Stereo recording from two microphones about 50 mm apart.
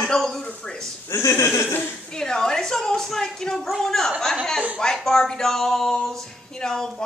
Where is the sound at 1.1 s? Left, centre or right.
Left.